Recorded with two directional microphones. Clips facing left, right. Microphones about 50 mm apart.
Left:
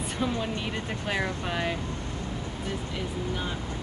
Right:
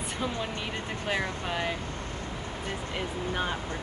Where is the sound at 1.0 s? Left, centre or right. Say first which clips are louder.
Even; centre.